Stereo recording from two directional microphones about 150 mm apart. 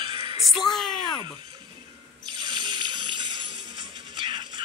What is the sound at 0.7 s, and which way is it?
Speech, centre (ahead or behind).